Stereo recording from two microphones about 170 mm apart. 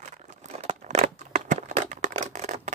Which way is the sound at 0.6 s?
40° right (ahead or behind).